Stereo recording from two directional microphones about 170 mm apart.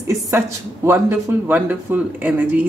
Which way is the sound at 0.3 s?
15° right (ahead or behind).